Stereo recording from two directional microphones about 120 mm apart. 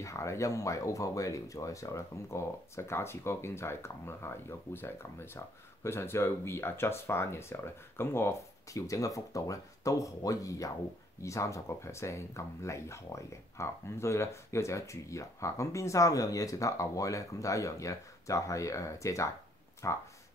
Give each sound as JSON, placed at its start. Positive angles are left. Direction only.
{"t": 0.0, "sound": "speech", "side_deg": 25}